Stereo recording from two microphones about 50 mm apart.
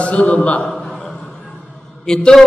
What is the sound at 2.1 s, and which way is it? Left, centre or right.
Speech, centre.